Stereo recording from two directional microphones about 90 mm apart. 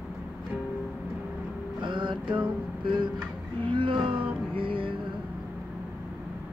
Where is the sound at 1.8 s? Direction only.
65° right (ahead or behind).